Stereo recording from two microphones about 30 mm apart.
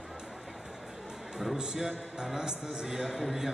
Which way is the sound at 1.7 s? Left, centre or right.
Centre.